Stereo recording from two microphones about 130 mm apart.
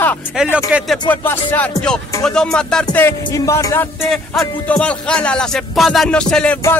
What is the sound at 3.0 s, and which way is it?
Music, 25° left (ahead or behind).